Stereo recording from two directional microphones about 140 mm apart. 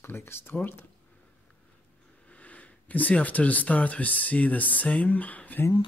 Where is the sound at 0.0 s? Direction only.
15° left (ahead or behind).